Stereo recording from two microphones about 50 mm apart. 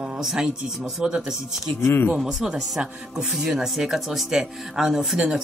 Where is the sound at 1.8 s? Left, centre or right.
Left.